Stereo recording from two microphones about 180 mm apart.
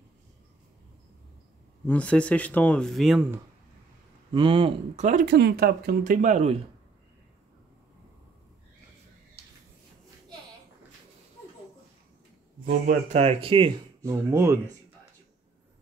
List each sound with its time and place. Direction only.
1.9 s speech: 5° left (ahead or behind)
4.3 s speech: 30° right (ahead or behind)
5.2 s speech: 65° right (ahead or behind); by 6.6 s 40° right (ahead or behind)
13.1 s speech: 35° right (ahead or behind)
14.0 s speech: 15° right (ahead or behind)